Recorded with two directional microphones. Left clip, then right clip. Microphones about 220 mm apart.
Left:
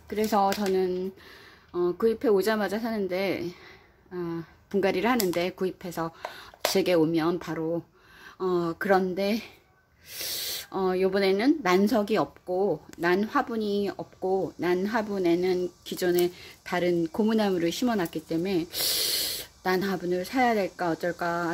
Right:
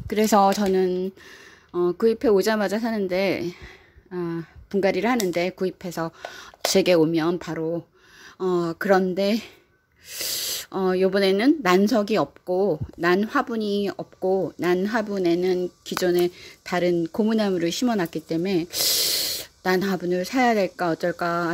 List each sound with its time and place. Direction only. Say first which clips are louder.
0.1 s speech: right 6 dB; 35° right (ahead or behind)